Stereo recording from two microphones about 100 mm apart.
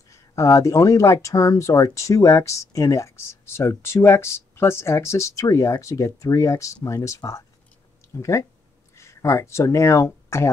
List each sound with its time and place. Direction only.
0.1 s speech: 30° left (ahead or behind)